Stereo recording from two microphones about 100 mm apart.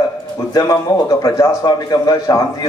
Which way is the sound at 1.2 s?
40° left (ahead or behind).